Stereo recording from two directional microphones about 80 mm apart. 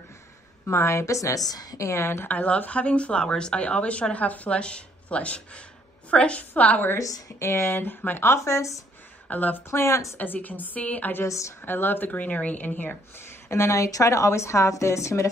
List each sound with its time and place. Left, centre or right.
0.7 s speech: left
2.3 s speech: centre
7.0 s speech: left
9.3 s speech: left
9.7 s speech: left
10.1 s speech: left
11.2 s speech: left
11.6 s speech: left
13.5 s speech: left